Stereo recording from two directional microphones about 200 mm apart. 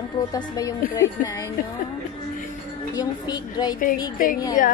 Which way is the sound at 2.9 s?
20° left (ahead or behind).